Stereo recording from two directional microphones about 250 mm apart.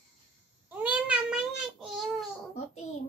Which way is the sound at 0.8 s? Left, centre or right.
Centre.